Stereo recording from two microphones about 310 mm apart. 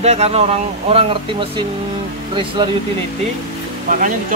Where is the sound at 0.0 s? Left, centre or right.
Centre.